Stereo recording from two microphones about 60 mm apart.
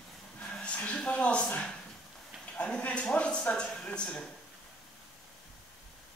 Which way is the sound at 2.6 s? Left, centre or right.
Left.